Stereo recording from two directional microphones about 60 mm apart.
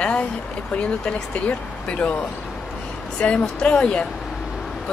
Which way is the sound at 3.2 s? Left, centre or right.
Centre.